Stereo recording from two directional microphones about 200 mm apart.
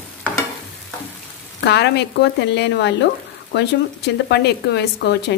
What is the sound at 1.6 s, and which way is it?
Speech, 55° left (ahead or behind).